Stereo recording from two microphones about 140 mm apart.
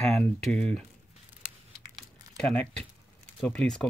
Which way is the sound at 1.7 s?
5° left (ahead or behind).